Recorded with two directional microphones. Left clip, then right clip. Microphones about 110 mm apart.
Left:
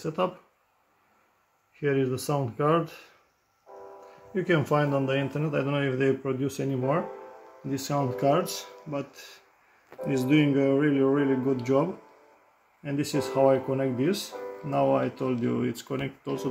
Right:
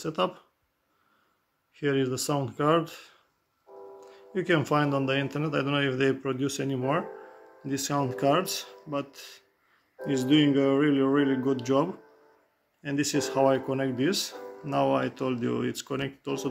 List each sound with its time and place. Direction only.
0.0 s speech: 15° right (ahead or behind)
1.8 s speech: 15° right (ahead or behind)
4.3 s speech: 20° right (ahead or behind)
10.0 s speech: centre (ahead or behind)
10.7 s speech: 15° right (ahead or behind)